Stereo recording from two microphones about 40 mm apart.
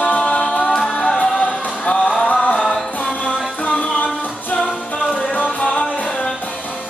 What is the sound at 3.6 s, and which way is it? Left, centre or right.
Music, left.